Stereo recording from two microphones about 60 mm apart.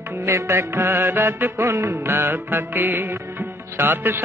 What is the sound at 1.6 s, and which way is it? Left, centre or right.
Music, right.